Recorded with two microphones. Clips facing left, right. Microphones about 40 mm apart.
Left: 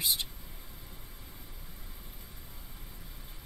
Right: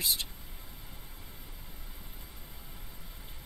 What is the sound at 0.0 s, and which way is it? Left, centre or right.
Speech, centre.